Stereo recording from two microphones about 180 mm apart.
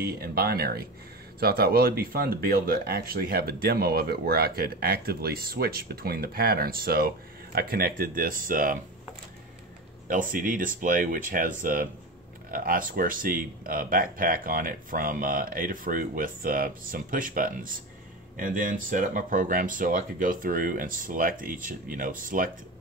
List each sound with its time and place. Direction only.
0.0 s speech: 60° right (ahead or behind)
10.0 s speech: 50° right (ahead or behind)